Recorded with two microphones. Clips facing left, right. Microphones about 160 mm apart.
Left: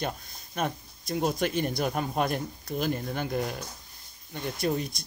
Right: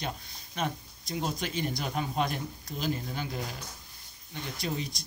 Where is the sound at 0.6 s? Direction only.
50° left (ahead or behind).